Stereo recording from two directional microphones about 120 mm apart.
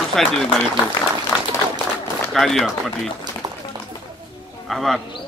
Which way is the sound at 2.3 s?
Centre (ahead or behind).